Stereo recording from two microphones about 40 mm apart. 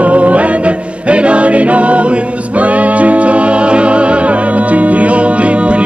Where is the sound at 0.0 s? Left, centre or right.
Right.